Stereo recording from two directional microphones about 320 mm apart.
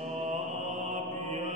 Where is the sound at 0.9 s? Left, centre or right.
Right.